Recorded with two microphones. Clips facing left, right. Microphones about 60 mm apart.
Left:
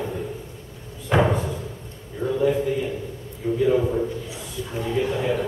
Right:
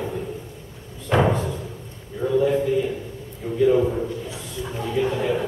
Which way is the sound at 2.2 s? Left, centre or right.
Right.